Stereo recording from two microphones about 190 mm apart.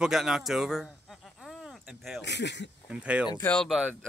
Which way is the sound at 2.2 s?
65° left (ahead or behind).